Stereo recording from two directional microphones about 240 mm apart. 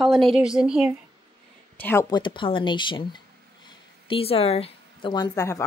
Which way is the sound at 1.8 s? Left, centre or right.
Centre.